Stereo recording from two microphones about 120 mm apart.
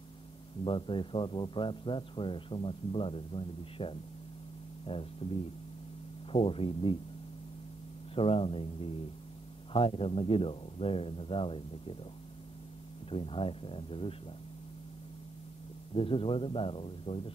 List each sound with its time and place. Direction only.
0.7 s speech: 45° left (ahead or behind)
8.1 s speech: 50° left (ahead or behind)
13.1 s speech: 50° left (ahead or behind)
15.9 s speech: 50° left (ahead or behind)